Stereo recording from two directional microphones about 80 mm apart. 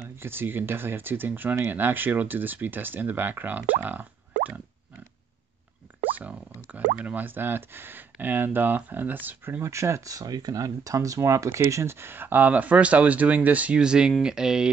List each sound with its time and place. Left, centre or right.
0.0 s speech: right
6.1 s speech: centre
9.6 s speech: right; by 14.7 s centre